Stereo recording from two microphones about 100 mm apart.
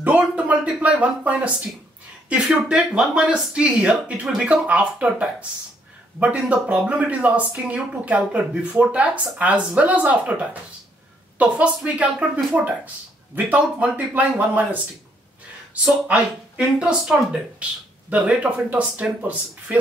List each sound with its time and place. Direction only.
0.0 s speech: 15° right (ahead or behind)
18.1 s speech: 10° right (ahead or behind)